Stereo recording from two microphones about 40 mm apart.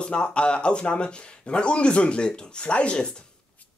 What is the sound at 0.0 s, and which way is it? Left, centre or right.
Speech, left.